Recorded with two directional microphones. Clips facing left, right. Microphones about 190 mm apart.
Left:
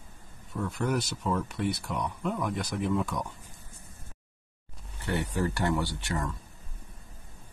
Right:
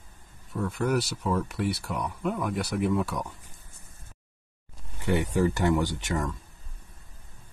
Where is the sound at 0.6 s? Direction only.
5° right (ahead or behind).